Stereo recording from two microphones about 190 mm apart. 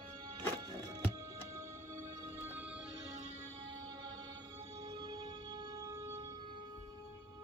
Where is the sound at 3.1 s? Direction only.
35° right (ahead or behind).